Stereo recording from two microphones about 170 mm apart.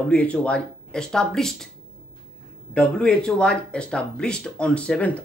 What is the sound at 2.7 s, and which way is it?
Speech, 5° left (ahead or behind).